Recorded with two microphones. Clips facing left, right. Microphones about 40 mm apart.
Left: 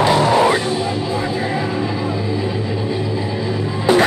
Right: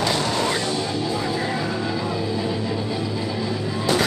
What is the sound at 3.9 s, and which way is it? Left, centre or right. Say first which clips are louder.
Music: left 8 dB; left.